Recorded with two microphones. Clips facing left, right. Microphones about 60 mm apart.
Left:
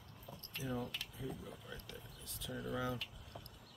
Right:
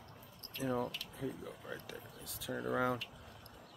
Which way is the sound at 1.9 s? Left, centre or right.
Right.